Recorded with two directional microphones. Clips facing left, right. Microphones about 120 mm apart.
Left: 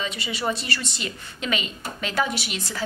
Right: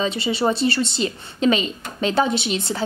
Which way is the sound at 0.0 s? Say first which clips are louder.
Right 7 dB; 30° right (ahead or behind).